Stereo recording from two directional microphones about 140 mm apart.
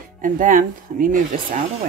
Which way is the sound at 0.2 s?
70° right (ahead or behind).